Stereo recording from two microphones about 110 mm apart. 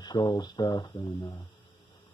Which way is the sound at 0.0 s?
45° left (ahead or behind).